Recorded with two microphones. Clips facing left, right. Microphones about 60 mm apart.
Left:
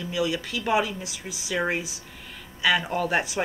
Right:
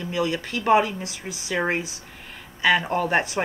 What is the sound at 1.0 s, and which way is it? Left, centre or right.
Speech, right.